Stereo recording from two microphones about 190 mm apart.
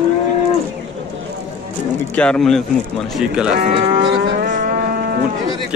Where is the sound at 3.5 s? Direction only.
55° right (ahead or behind).